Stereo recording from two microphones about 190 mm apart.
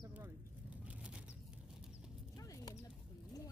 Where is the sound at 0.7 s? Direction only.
5° right (ahead or behind).